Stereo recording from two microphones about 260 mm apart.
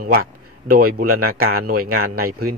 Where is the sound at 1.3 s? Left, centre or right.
Right.